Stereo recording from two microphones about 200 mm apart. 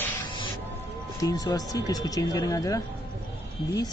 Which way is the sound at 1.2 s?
20° left (ahead or behind).